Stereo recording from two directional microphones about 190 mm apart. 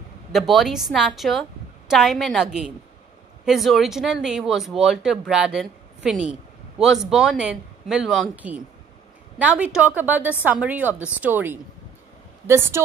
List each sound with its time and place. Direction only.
0.3 s a woman's voice: centre (ahead or behind)